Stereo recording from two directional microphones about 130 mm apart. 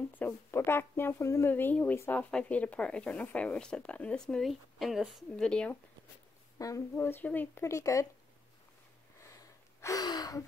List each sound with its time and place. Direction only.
0.1 s speech: 15° left (ahead or behind)
6.6 s speech: 20° left (ahead or behind)
9.2 s gasp: 25° left (ahead or behind)